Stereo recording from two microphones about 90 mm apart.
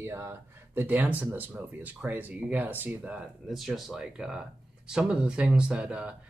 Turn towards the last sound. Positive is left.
turn(degrees=-10)  # may be behind; listen again after turning